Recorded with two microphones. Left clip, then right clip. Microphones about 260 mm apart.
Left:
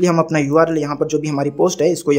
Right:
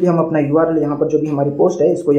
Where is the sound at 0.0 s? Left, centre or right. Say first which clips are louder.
Right 1 dB; left.